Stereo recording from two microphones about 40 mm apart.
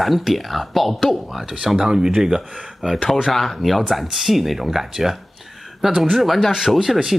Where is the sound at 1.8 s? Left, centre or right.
Right.